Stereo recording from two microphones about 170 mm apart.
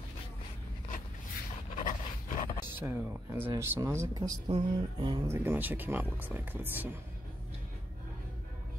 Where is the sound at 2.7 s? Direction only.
10° right (ahead or behind); by 5.2 s 25° right (ahead or behind).